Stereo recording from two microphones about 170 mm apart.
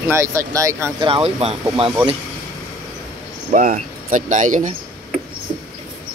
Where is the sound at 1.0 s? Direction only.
35° right (ahead or behind).